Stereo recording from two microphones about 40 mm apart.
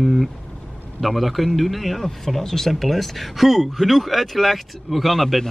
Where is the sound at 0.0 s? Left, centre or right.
Centre.